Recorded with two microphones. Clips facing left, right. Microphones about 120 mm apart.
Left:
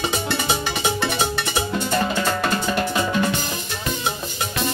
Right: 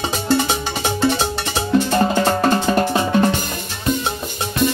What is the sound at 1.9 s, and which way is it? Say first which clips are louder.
Drum: right 5 dB; 40° right (ahead or behind).